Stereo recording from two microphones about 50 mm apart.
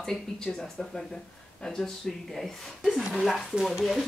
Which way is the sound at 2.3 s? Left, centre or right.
Centre.